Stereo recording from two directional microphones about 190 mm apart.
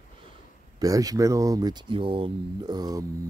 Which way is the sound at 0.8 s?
20° right (ahead or behind).